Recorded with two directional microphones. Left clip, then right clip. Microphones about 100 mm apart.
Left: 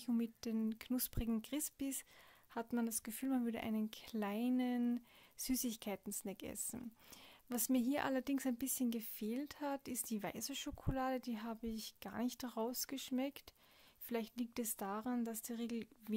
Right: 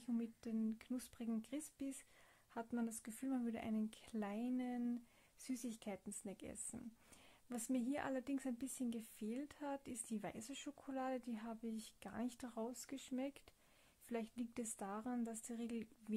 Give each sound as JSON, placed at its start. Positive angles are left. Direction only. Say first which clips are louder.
{"t": 0.0, "sound": "a woman's voice", "louder": "left 5 dB", "side_deg": 35}